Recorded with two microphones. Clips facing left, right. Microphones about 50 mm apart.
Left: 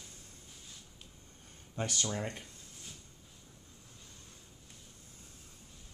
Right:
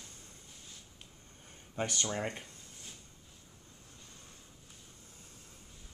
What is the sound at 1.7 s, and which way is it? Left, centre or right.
Speech, centre.